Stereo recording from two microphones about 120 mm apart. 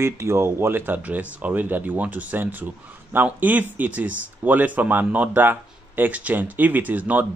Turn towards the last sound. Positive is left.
turn(degrees=-15)  # may be behind; listen again after turning